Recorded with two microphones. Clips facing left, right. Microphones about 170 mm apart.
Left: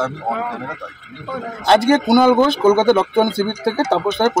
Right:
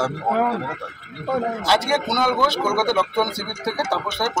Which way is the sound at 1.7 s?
50° left (ahead or behind).